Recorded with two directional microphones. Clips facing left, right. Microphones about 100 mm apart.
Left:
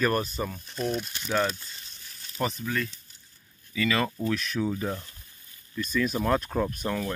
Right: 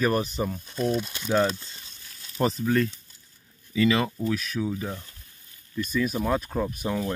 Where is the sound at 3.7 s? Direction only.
25° right (ahead or behind).